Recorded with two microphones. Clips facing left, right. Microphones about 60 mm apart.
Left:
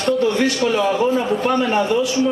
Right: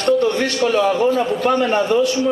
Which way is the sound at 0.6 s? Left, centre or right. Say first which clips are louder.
Right 4 dB; centre.